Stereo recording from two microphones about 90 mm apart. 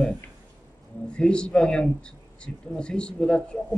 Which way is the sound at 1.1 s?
10° left (ahead or behind).